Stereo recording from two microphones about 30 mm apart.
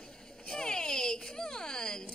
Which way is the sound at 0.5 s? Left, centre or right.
Left.